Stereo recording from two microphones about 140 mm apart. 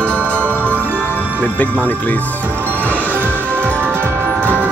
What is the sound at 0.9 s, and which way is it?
Music, 10° left (ahead or behind).